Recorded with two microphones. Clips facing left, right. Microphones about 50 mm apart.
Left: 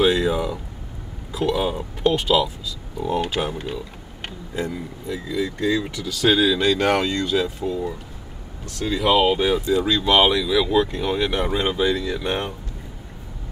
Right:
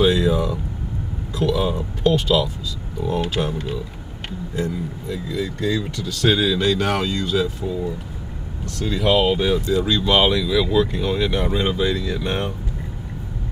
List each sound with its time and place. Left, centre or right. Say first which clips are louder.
0.0 s vehicle: right 1 dB; centre
1.3 s speech: right 1 dB; centre